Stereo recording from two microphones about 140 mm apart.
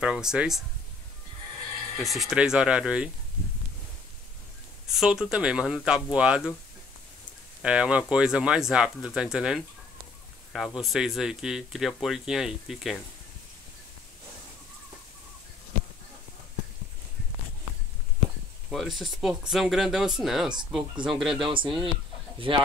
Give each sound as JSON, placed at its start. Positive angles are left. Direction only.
{"t": 0.0, "sound": "speech", "side_deg": -5}
{"t": 2.0, "sound": "speech", "side_deg": -5}
{"t": 4.8, "sound": "speech", "side_deg": -5}
{"t": 7.6, "sound": "speech", "side_deg": -5}
{"t": 18.7, "sound": "speech", "side_deg": 0}
{"t": 21.4, "sound": "speech", "side_deg": -35}